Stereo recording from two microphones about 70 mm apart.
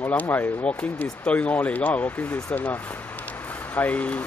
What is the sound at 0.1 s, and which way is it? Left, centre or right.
Speech, left.